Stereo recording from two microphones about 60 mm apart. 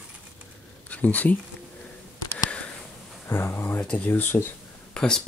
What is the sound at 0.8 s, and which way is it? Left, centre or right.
Speech, left.